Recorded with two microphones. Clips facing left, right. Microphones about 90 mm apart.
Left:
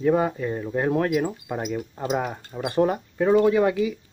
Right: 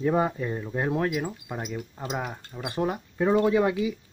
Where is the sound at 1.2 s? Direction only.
10° left (ahead or behind).